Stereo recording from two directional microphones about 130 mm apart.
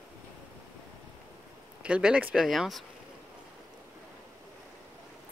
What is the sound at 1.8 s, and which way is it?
Speech, 5° right (ahead or behind).